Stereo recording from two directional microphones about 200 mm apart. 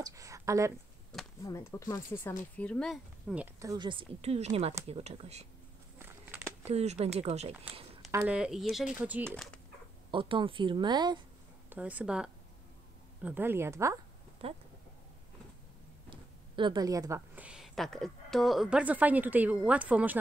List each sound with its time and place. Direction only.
0.0 s speech: 15° right (ahead or behind)
1.4 s speech: 15° left (ahead or behind)
3.5 s speech: 20° right (ahead or behind)
5.9 s a sound: 10° right (ahead or behind)
6.7 s speech: 30° right (ahead or behind)
8.1 s speech: 10° right (ahead or behind)
10.1 s speech: 25° right (ahead or behind)
11.7 s speech: 5° right (ahead or behind)
14.4 s speech: 30° right (ahead or behind)
16.1 s speech: 25° right (ahead or behind); by 20.2 s 5° right (ahead or behind)